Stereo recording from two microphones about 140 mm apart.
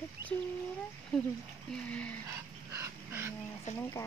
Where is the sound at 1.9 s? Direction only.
10° left (ahead or behind).